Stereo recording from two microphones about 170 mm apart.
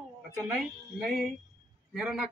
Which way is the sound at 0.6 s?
Centre (ahead or behind).